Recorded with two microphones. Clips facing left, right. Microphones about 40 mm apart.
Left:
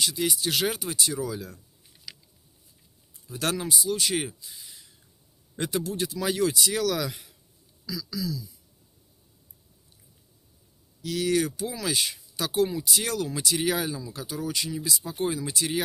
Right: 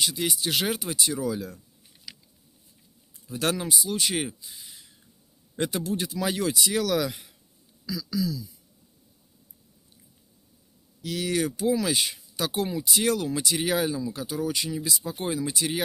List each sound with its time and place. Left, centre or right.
0.0 s speech: centre
2.1 s a sound: centre
3.3 s speech: centre
7.8 s speech: right
11.0 s speech: centre
12.8 s speech: right